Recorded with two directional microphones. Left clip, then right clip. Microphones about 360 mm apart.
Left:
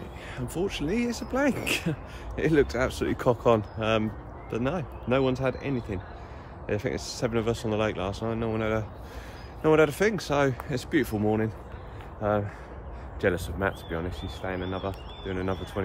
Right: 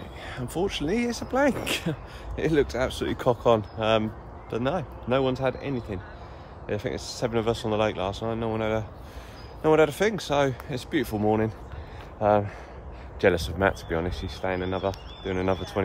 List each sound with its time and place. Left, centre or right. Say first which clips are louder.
0.3 s speech: right 2 dB; centre